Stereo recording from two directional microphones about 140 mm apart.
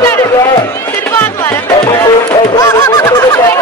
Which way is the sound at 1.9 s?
25° left (ahead or behind).